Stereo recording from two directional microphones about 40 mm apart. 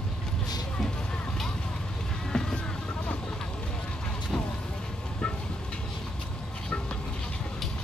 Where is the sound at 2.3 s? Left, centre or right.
Centre.